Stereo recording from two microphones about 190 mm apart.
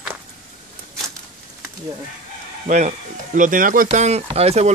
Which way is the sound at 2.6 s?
40° right (ahead or behind).